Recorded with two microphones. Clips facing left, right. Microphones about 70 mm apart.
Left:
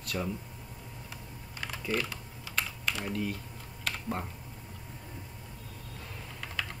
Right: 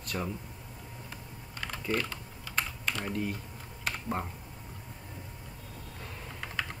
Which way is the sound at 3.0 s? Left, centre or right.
Centre.